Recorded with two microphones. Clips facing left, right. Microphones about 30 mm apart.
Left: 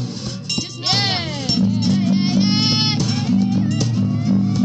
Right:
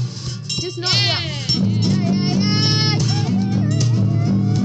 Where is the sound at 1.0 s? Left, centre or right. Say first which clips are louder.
Even; centre.